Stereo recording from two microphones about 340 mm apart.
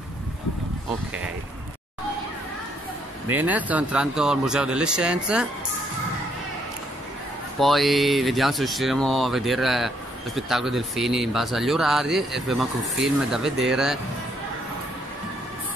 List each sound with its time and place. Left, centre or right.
3.3 s speech: centre
7.5 s speech: centre